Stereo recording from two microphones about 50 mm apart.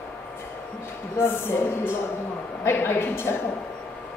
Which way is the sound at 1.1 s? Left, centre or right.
Left.